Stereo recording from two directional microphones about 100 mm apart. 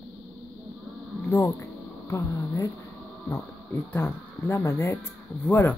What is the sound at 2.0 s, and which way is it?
Speech, 25° left (ahead or behind).